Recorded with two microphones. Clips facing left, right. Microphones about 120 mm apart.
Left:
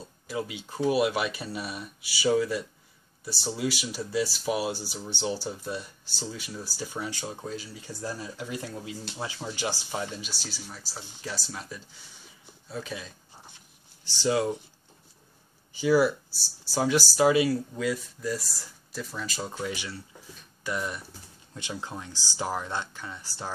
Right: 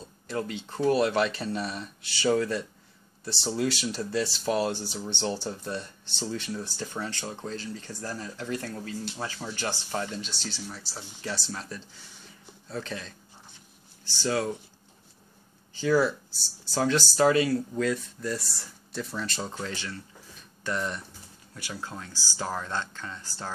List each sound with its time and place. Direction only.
0.3 s speech: 5° left (ahead or behind)
14.2 s speech: 15° left (ahead or behind)
15.7 s speech: 10° left (ahead or behind)
19.7 s speech: 15° left (ahead or behind)
21.5 s speech: 20° left (ahead or behind)